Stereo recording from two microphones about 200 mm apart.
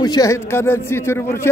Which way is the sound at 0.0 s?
20° left (ahead or behind).